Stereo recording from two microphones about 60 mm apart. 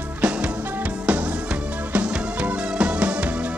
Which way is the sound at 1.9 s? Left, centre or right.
Right.